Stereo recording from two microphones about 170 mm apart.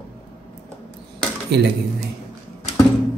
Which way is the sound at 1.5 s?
80° right.